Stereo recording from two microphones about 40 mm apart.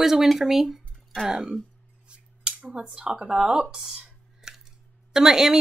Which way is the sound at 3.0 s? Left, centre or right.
Right.